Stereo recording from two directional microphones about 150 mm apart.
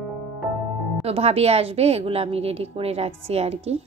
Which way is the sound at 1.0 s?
45° right (ahead or behind).